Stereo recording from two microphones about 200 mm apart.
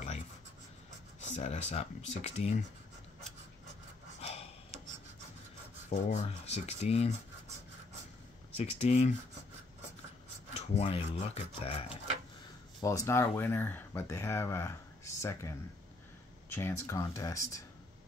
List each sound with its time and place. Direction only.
1.3 s speech: 35° left (ahead or behind)
4.2 s gasp: 30° left (ahead or behind)
5.9 s speech: 35° left (ahead or behind)
8.5 s speech: 30° left (ahead or behind)
10.5 s speech: 30° left (ahead or behind)
12.8 s speech: 15° left (ahead or behind)